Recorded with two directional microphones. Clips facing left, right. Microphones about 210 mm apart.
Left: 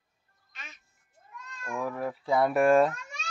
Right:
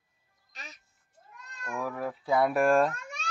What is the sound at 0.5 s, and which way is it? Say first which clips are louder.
Music: right 2 dB; 40° right (ahead or behind).